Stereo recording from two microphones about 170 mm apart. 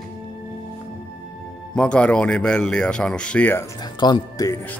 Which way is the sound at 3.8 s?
25° left (ahead or behind).